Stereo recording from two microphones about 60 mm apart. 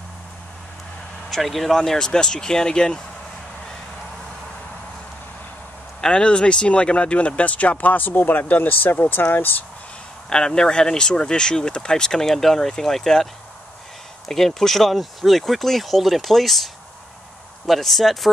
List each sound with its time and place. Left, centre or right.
1.3 s speech: centre
5.9 s speech: centre; by 9.7 s left
10.3 s speech: centre